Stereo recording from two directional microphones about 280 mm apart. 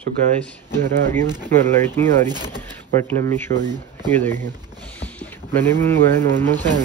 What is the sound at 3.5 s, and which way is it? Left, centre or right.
Speech, right.